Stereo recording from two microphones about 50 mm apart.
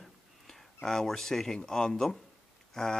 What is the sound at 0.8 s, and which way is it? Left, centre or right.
Speech, centre.